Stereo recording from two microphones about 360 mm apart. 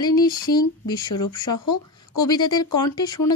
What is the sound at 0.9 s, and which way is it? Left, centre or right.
Speech, left.